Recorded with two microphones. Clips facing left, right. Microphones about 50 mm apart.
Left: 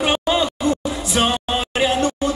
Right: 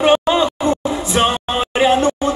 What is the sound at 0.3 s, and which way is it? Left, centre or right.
Music, centre.